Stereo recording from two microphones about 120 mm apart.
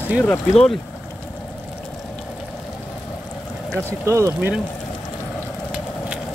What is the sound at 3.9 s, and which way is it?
Speech, 25° right (ahead or behind).